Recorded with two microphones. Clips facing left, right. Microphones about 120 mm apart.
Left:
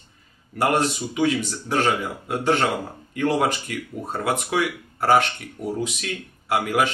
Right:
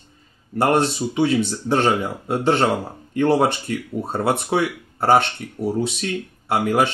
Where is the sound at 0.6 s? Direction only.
30° right (ahead or behind).